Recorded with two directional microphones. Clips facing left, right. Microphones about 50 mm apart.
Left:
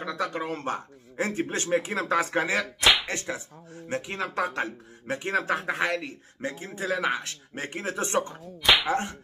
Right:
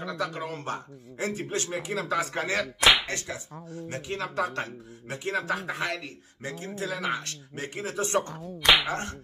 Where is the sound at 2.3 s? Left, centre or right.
Centre.